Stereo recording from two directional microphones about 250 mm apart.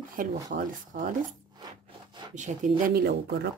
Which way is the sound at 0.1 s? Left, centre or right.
Right.